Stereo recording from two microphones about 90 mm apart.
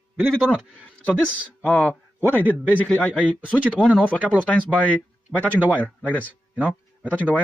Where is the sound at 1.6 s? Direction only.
15° left (ahead or behind).